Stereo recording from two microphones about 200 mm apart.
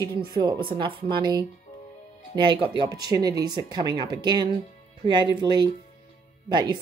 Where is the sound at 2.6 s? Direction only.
20° right (ahead or behind).